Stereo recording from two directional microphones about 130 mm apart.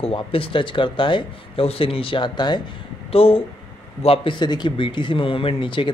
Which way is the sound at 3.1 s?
45° left (ahead or behind).